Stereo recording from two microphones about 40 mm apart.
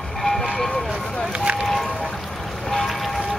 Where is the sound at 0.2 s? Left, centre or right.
Centre.